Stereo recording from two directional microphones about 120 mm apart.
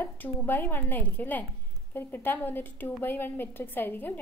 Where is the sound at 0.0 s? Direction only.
15° left (ahead or behind).